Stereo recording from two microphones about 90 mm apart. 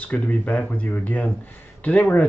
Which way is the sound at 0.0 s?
15° left (ahead or behind).